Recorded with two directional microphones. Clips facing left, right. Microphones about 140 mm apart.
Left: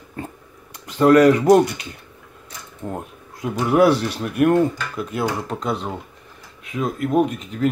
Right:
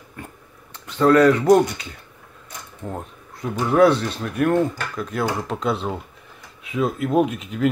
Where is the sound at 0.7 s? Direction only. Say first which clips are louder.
Left 2 dB; 10° left (ahead or behind).